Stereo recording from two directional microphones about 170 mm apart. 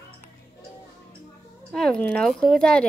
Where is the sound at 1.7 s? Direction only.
5° left (ahead or behind).